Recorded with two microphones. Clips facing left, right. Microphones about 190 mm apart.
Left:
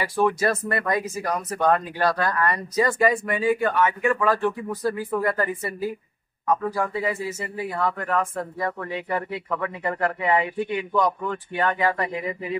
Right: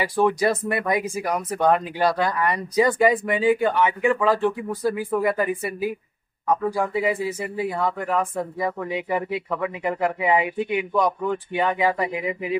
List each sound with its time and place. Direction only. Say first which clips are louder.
0.0 s speech: right 2 dB; 15° right (ahead or behind)